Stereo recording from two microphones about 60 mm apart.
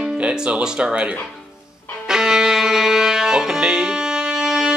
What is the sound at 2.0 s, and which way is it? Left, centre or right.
Music, centre.